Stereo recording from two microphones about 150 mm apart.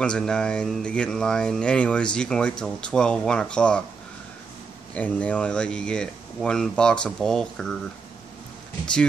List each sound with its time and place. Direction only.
0.0 s speech: 5° left (ahead or behind)
4.9 s speech: 10° left (ahead or behind)